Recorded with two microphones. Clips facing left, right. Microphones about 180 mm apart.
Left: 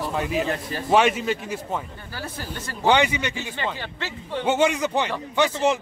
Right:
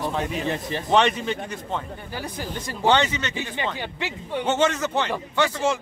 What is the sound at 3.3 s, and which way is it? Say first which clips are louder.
Speech: right 1 dB; 15° right (ahead or behind).